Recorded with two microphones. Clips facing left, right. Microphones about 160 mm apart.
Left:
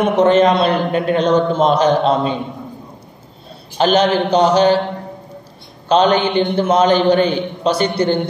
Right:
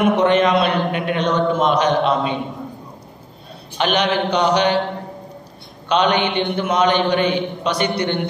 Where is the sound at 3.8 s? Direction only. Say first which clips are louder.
Left 5 dB; 35° left (ahead or behind).